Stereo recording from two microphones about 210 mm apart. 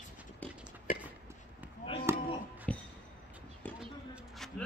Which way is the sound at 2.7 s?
5° left (ahead or behind).